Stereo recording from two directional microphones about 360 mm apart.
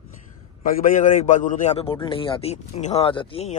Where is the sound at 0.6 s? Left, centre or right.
Left.